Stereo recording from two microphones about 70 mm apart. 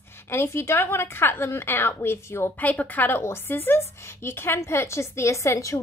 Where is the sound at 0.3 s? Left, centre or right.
Left.